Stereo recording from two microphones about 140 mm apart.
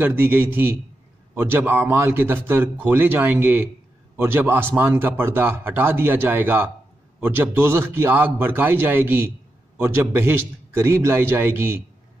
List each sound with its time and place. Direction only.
0.0 s speech: 15° right (ahead or behind)